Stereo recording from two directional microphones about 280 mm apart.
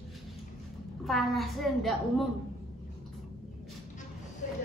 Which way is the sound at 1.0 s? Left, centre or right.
Centre.